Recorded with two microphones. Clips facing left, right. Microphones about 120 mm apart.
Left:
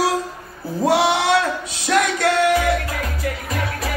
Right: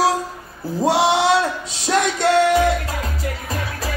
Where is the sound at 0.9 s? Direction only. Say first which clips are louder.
Right 1 dB; 25° right (ahead or behind).